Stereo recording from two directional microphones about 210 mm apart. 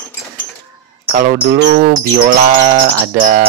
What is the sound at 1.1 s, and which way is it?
Speech, 40° right (ahead or behind).